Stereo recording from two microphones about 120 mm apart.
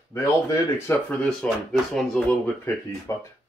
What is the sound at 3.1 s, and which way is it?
Speech, 25° left (ahead or behind).